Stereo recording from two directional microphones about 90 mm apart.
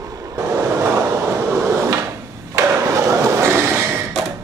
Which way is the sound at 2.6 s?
40° right (ahead or behind).